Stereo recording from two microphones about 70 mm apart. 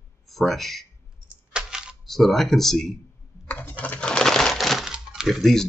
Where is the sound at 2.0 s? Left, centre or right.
Centre.